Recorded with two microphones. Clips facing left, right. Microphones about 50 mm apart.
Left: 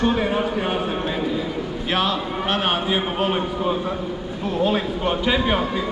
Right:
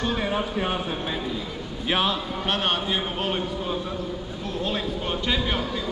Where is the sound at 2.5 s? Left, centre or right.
Centre.